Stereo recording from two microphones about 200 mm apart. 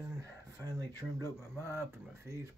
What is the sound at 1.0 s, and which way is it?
Speech, centre (ahead or behind).